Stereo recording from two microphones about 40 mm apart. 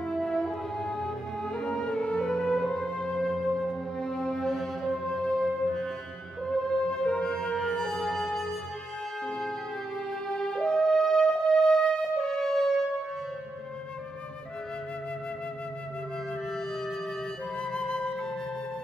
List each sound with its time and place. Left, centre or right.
0.0 s music: centre
10.2 s music: centre
17.6 s flute: left